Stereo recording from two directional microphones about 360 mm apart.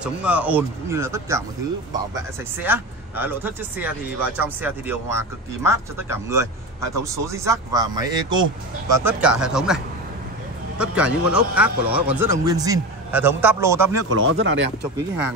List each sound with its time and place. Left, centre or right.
0.0 s speech: centre
2.6 s speech: centre
10.8 s speech: centre
14.0 s speech: right